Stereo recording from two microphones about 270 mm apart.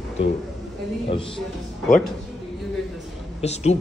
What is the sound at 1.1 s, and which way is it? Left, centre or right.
Speech, centre.